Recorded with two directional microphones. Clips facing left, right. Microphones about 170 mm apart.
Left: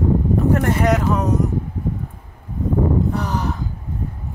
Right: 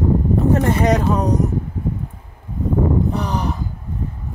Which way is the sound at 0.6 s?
20° right (ahead or behind).